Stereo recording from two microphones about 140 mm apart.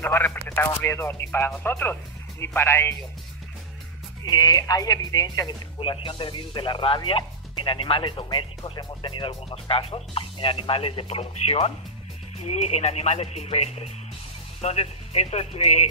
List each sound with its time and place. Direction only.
0.0 s speech: 15° left (ahead or behind)
4.2 s speech: 30° left (ahead or behind)
5.8 s speech: 40° left (ahead or behind)